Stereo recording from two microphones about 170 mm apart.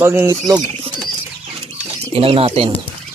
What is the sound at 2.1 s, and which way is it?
Speech, 35° right (ahead or behind).